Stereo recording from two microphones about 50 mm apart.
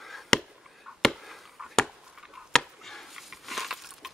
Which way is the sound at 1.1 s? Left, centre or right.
Centre.